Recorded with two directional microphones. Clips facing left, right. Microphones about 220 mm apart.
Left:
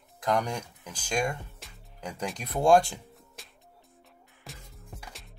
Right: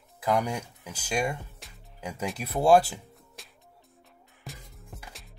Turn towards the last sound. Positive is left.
turn(degrees=0)  # may be behind; listen again after turning